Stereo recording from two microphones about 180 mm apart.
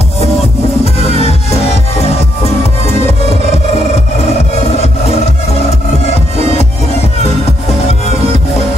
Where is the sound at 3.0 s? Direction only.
35° left (ahead or behind).